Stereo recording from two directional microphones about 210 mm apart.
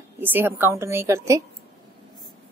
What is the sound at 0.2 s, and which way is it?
A woman's voice, 10° right (ahead or behind).